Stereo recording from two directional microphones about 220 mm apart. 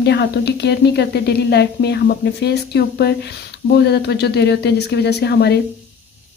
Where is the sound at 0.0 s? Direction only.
50° left (ahead or behind).